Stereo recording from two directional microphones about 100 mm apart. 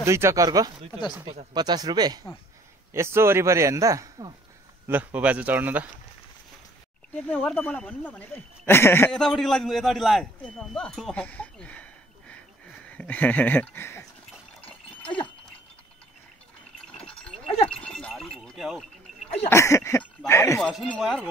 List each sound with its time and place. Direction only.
0.0 s a man's voice: 30° right (ahead or behind)
0.5 s speech: 45° right (ahead or behind)
2.9 s a man's voice: 25° right (ahead or behind)
4.8 s speech: 15° right (ahead or behind)
7.4 s speech: 15° left (ahead or behind)
9.1 s a man's voice: 5° left (ahead or behind)
11.2 s a sound: 15° left (ahead or behind)
12.8 s speech: 15° left (ahead or behind)
17.1 s a sound: 10° left (ahead or behind)
17.5 s speech: 80° left
17.7 s a sound: 10° left (ahead or behind)
19.5 s speech: 30° left (ahead or behind)
20.6 s a man's voice: centre (ahead or behind)